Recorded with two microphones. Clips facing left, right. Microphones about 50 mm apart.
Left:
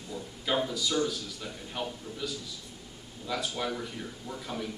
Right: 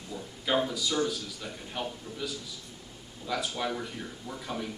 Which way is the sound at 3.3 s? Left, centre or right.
Centre.